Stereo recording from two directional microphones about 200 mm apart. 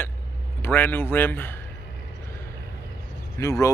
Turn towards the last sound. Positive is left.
turn(degrees=15)  # may be behind; listen again after turning